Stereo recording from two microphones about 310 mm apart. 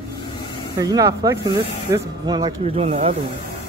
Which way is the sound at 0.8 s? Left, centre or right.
Centre.